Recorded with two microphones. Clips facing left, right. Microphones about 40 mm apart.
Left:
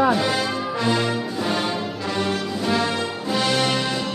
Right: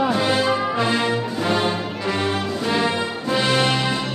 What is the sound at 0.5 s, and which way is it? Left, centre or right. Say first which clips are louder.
Brass instrument: right 4 dB; right.